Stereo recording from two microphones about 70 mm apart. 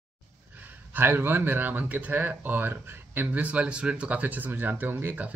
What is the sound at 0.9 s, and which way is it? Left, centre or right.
Speech, right.